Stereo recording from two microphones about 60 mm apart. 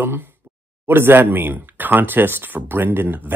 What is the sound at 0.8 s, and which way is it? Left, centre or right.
Speech, right.